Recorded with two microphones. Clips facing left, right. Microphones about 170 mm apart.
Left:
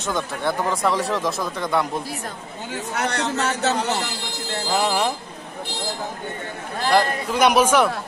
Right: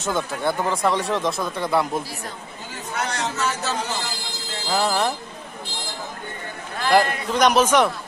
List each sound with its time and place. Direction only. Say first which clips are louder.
0.1 s speech: right 1 dB; centre (ahead or behind)
3.0 s a man's voice: left 2 dB; 65° left (ahead or behind)
4.7 s speech: even; 10° left (ahead or behind)
7.3 s speech: even; 10° left (ahead or behind)